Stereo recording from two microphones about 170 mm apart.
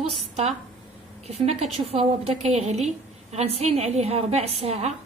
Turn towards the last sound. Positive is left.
turn(degrees=-40)  # may be behind; listen again after turning